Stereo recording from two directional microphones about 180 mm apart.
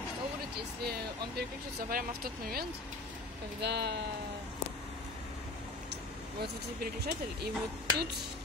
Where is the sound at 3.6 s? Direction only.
70° right (ahead or behind).